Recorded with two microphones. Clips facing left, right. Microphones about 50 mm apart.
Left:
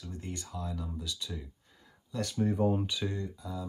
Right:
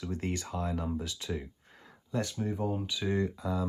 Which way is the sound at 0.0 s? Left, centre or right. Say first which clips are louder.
Right 7 dB; right.